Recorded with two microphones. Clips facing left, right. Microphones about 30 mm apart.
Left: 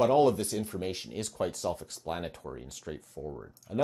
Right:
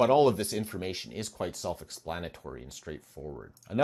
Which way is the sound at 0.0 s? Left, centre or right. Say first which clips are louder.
Right 1 dB; right.